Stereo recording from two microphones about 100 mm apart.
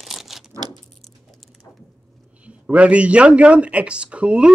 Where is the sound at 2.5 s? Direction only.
15° right (ahead or behind).